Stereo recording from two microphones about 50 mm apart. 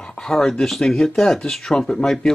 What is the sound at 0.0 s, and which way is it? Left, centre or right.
Speech, centre.